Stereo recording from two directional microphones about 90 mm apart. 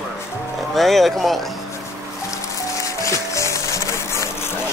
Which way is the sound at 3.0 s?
35° left (ahead or behind).